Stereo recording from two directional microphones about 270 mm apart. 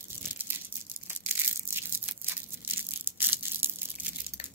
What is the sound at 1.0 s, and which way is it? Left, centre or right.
Tearing, centre.